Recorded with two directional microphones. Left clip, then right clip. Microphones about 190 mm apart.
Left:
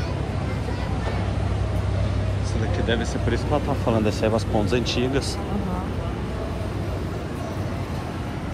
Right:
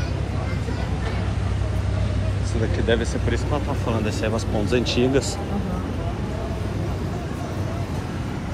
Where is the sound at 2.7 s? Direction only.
15° left (ahead or behind).